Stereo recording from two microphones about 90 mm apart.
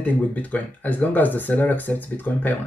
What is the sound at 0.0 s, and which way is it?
Speech, 15° left (ahead or behind).